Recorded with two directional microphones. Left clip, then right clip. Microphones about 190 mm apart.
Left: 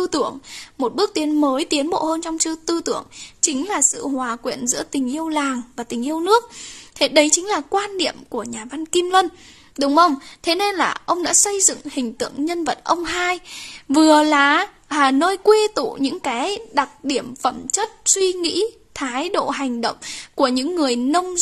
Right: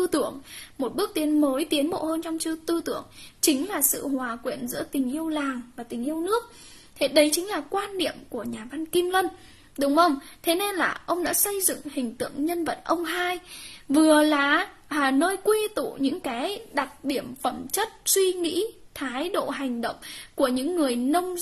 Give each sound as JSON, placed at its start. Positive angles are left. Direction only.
{"t": 0.0, "sound": "speech", "side_deg": 25}
{"t": 7.2, "sound": "speech", "side_deg": 35}